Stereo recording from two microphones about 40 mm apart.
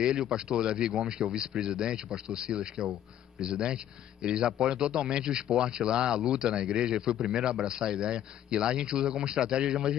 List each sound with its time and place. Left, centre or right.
0.3 s speech: centre